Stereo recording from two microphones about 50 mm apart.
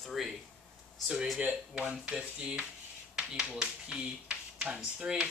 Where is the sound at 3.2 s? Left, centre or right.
Right.